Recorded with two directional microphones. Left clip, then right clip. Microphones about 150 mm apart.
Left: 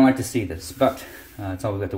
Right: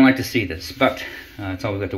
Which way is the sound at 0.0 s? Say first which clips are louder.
Right 3 dB; 20° left (ahead or behind).